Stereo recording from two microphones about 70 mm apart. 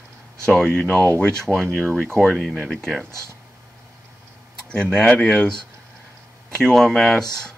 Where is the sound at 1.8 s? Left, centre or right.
Centre.